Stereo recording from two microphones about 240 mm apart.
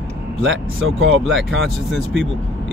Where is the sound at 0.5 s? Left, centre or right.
Right.